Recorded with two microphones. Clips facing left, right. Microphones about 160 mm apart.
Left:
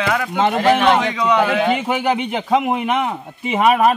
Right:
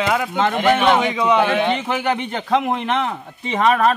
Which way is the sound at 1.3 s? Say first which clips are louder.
Left 1 dB; centre (ahead or behind).